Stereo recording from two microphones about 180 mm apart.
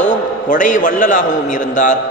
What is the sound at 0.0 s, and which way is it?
A man's voice, 45° left (ahead or behind).